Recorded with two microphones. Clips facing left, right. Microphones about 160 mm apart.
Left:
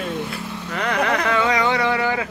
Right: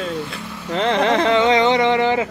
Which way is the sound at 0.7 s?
25° right (ahead or behind).